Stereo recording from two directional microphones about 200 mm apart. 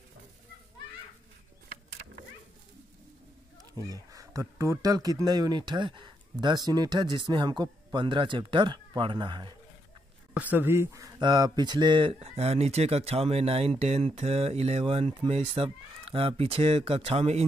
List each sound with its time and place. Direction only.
3.9 s speech: 15° right (ahead or behind)
10.3 s speech: 10° right (ahead or behind); by 17.5 s 30° right (ahead or behind)